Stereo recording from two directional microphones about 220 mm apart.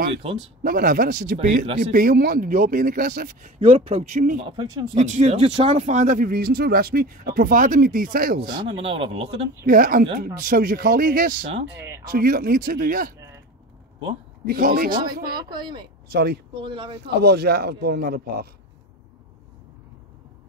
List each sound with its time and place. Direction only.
0.1 s speech: 25° right (ahead or behind)
0.7 s speech: 40° right (ahead or behind)
4.5 s speech: 20° right (ahead or behind)
4.9 s speech: 30° right (ahead or behind)
8.5 s speech: 20° right (ahead or behind)
9.7 s speech: 40° right (ahead or behind)
11.8 s a sound: 15° right (ahead or behind)
12.1 s speech: 40° right (ahead or behind)
14.4 s speech: 40° right (ahead or behind)
15.3 s speech: 20° right (ahead or behind)
16.1 s speech: 45° right (ahead or behind)
16.6 s speech: 25° right (ahead or behind)
17.0 s speech: 45° right (ahead or behind)